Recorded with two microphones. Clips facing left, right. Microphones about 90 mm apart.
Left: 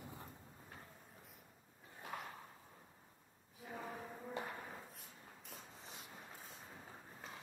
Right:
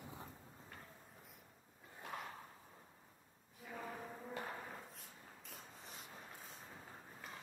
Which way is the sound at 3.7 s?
20° left (ahead or behind).